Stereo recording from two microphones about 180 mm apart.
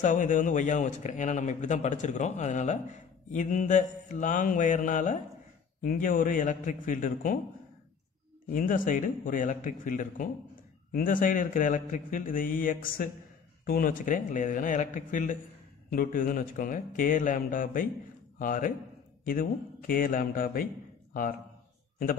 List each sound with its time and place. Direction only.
0.0 s speech: 45° left (ahead or behind)
8.5 s speech: 50° left (ahead or behind)